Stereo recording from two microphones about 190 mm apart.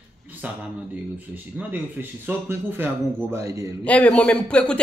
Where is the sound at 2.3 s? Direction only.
10° right (ahead or behind).